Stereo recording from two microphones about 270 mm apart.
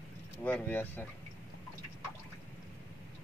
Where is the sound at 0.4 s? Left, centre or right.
Centre.